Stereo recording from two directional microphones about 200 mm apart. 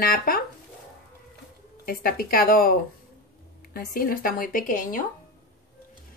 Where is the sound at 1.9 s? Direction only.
45° left (ahead or behind).